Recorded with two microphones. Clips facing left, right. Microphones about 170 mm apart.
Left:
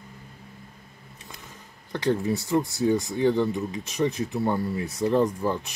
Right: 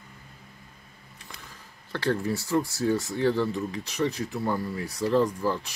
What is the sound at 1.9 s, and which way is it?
Speech, 20° left (ahead or behind).